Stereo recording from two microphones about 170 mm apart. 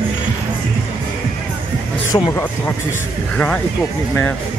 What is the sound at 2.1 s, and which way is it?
Speech, 15° left (ahead or behind).